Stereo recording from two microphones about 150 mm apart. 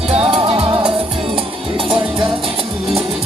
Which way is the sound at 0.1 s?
40° right (ahead or behind).